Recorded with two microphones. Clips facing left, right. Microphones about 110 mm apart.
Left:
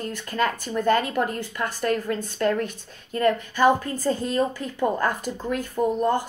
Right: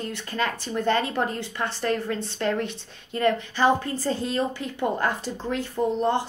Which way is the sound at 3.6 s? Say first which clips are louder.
Left 2 dB; 45° left (ahead or behind).